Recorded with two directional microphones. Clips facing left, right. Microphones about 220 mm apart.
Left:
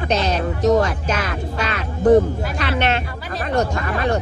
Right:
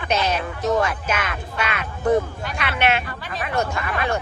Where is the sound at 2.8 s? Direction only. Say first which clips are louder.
Right 2 dB; 10° right (ahead or behind).